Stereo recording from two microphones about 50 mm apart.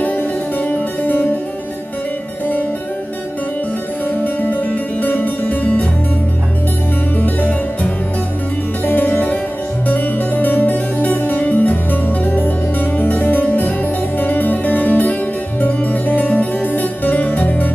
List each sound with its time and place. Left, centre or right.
0.0 s music: left
4.2 s music: left
7.2 s music: left